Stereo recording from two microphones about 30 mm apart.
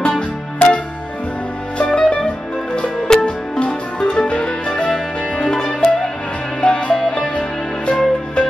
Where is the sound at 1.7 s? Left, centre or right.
Left.